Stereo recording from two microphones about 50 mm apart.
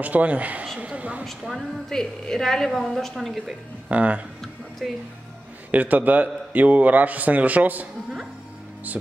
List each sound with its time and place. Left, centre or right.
0.0 s a man's voice: right
0.7 s a sound: right
1.2 s speech: centre
1.9 s a woman's voice: centre
3.9 s a man's voice: right
4.8 s speech: centre
5.7 s a man's voice: right